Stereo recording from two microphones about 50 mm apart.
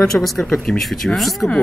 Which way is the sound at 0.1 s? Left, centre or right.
Centre.